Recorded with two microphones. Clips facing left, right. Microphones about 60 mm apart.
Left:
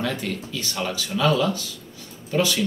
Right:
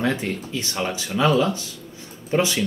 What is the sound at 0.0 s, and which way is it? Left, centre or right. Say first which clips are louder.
Speech: right 3 dB; right.